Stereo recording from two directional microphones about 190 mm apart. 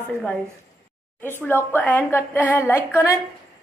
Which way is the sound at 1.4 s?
10° left (ahead or behind).